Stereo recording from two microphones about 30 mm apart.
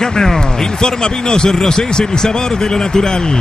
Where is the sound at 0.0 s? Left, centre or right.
Centre.